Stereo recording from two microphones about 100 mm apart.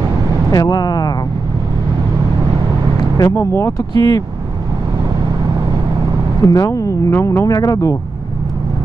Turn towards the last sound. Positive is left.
turn(degrees=35)  # may be behind; listen again after turning